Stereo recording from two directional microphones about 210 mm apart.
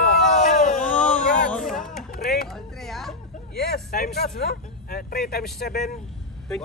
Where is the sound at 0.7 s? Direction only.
5° left (ahead or behind).